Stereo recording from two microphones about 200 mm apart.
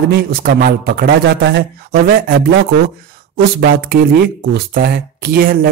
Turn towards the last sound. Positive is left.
turn(degrees=-45)  # may be behind; listen again after turning